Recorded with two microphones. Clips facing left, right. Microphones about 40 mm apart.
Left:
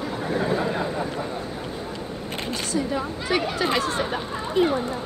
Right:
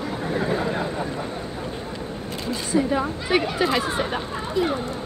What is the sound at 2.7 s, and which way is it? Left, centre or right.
Speech, centre.